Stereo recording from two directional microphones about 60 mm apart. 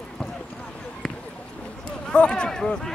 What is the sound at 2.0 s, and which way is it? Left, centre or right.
Speech, centre.